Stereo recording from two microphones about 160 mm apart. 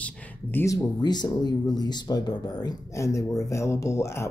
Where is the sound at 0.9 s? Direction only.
25° left (ahead or behind).